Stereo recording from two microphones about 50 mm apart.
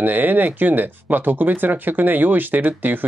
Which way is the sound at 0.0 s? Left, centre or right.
Right.